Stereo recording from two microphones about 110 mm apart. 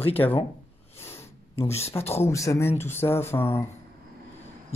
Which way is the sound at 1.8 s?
25° left (ahead or behind).